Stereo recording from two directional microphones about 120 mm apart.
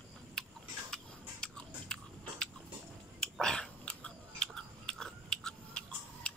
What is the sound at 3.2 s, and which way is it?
Biting, 5° left (ahead or behind).